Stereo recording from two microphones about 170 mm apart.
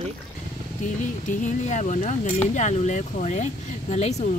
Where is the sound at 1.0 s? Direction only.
45° left (ahead or behind).